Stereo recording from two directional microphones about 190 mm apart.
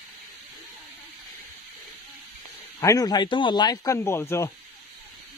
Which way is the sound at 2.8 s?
20° left (ahead or behind).